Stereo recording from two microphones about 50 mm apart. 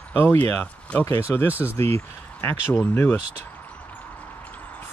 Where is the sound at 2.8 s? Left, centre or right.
Left.